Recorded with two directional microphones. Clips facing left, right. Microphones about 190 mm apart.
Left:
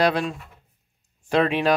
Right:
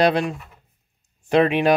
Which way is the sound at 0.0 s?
20° right (ahead or behind).